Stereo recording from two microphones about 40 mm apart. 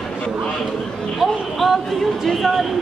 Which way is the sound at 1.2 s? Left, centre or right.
Centre.